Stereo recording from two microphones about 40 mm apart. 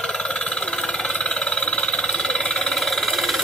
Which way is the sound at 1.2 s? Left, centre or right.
Left.